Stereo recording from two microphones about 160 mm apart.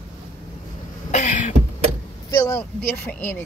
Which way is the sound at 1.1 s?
50° left (ahead or behind).